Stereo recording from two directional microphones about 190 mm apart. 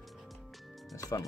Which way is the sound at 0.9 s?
15° left (ahead or behind).